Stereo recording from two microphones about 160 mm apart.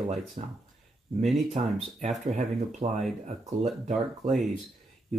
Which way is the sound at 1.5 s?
40° right (ahead or behind).